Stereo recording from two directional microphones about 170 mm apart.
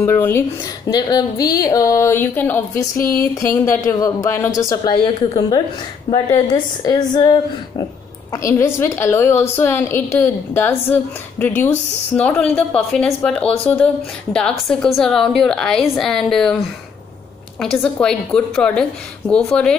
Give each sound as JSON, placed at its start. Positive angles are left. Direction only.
{"t": 0.0, "sound": "a woman's voice", "side_deg": 15}
{"t": 17.6, "sound": "a woman's voice", "side_deg": 5}